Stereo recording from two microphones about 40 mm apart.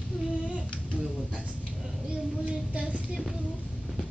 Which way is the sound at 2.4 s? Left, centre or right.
Right.